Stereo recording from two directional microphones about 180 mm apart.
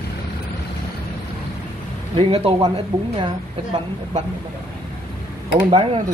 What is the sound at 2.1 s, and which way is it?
A woman's voice, 30° right (ahead or behind).